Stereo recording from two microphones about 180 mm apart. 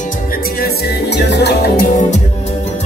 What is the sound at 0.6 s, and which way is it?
Music, 65° left (ahead or behind).